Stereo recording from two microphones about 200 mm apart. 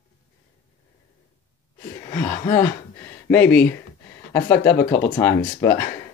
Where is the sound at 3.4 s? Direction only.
55° left (ahead or behind).